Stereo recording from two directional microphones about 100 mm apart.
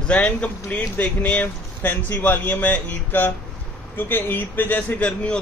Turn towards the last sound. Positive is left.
turn(degrees=15)  # may be behind; listen again after turning